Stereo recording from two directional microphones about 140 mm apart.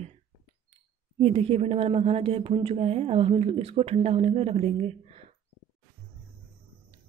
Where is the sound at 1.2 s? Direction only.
45° right (ahead or behind).